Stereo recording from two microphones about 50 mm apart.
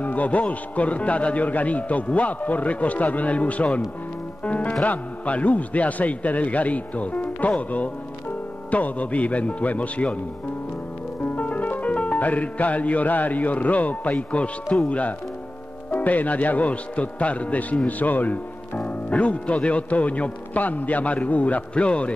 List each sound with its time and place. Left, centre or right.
0.0 s a man's voice: left
11.3 s music: left
14.9 s a man's voice: left